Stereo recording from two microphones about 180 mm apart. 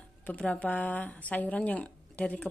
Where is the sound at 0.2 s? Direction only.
10° left (ahead or behind).